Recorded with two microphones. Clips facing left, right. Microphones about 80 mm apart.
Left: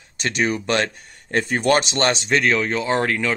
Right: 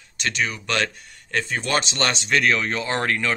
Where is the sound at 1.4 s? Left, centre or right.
Left.